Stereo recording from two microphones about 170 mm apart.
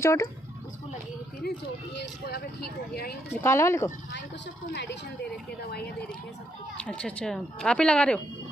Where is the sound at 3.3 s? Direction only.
15° left (ahead or behind).